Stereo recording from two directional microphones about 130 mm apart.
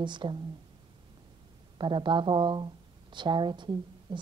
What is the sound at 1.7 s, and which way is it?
Speech, 35° right (ahead or behind).